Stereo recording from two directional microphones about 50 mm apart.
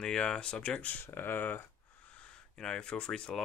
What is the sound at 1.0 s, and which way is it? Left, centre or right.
Speech, left.